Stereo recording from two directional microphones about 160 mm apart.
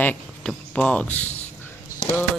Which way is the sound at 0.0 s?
10° left (ahead or behind).